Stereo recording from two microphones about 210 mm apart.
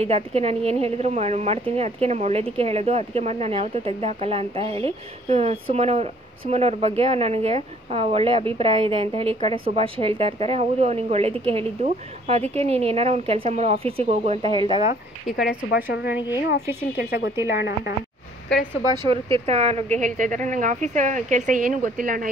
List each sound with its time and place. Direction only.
0.0 s speech: 30° right (ahead or behind)
15.2 s speech: centre (ahead or behind)
15.7 s a woman's voice: 50° left (ahead or behind)
17.4 s a woman's voice: 15° right (ahead or behind)
18.9 s speech: 25° right (ahead or behind)